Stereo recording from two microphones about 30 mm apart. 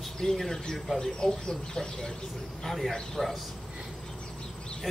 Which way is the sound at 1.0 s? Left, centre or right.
Left.